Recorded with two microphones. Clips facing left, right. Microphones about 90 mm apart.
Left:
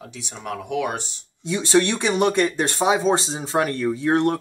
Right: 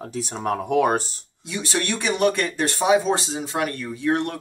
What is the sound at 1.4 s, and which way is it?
Speech, 30° left (ahead or behind).